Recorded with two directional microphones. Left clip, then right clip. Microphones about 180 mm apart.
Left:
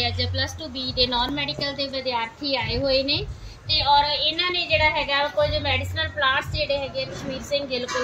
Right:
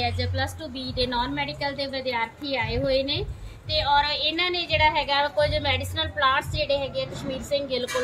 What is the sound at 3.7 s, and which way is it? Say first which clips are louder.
A woman's voice: left 3 dB; 20° right (ahead or behind).